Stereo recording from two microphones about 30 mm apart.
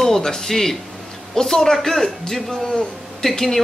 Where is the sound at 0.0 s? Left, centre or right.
Centre.